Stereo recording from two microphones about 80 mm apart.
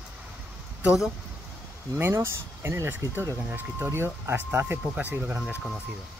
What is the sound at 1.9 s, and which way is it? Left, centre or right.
Speech, right.